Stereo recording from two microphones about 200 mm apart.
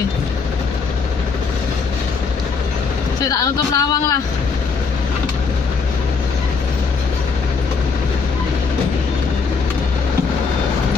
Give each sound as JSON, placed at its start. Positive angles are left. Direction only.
{"t": 3.3, "sound": "speech", "side_deg": 15}